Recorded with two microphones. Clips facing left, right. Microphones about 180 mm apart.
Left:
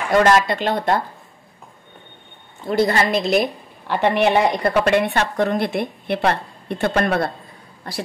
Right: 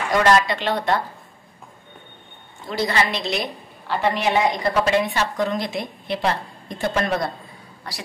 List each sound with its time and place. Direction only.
0.2 s speech: 45° left (ahead or behind)
2.7 s a woman's voice: 50° left (ahead or behind)